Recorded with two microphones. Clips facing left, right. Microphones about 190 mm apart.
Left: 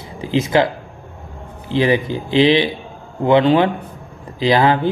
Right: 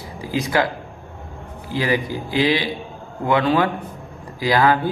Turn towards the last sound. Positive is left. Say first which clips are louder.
# left 3 dB
turn(degrees=25)  # may be behind; listen again after turning